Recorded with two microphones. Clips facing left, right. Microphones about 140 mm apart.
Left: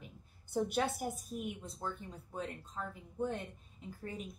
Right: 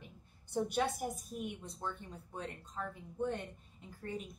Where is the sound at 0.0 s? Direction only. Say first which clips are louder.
Left 1 dB; centre (ahead or behind).